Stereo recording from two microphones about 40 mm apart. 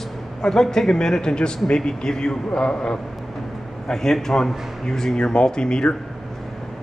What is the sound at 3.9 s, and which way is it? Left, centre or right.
Speech, centre.